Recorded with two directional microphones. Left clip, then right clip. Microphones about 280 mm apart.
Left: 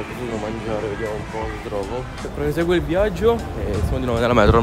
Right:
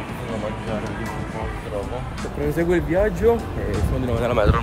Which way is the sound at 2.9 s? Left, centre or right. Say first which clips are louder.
Even; centre.